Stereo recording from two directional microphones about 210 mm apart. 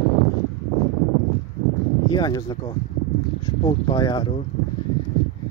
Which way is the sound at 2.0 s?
20° left (ahead or behind).